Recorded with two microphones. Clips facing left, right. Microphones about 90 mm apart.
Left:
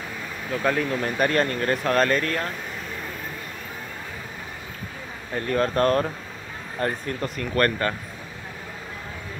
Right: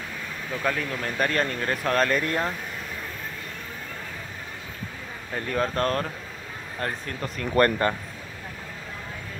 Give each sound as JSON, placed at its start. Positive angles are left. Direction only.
{"t": 0.5, "sound": "speech", "side_deg": 5}
{"t": 2.2, "sound": "speech", "side_deg": -20}
{"t": 5.3, "sound": "speech", "side_deg": 0}
{"t": 7.5, "sound": "speech", "side_deg": -20}